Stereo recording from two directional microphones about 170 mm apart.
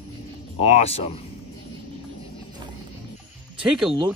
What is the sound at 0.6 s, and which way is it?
Speech, 35° left (ahead or behind).